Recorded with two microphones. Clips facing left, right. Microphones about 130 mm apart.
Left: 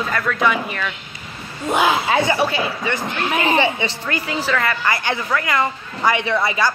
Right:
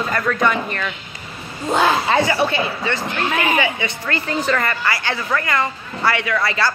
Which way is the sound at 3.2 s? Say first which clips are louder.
Left 2 dB; 25° left (ahead or behind).